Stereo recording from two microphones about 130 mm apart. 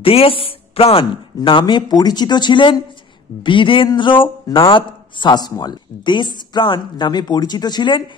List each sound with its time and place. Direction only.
0.0 s speech: 45° left (ahead or behind)